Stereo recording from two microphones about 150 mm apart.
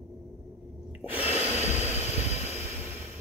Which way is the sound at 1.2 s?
45° left (ahead or behind).